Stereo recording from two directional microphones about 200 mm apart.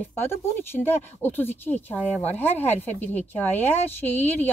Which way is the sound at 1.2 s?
10° left (ahead or behind).